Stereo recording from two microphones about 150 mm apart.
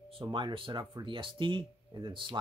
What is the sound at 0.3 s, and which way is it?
Speech, 30° right (ahead or behind).